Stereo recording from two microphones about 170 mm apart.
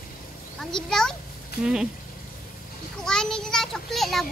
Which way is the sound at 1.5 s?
65° left (ahead or behind).